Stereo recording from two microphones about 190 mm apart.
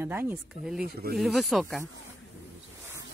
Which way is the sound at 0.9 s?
55° right (ahead or behind).